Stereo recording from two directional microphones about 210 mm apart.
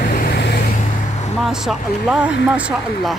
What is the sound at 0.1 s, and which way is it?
Vehicle, 45° left (ahead or behind).